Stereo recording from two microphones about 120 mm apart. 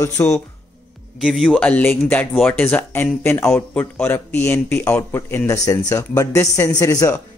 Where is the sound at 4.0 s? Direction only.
15° left (ahead or behind).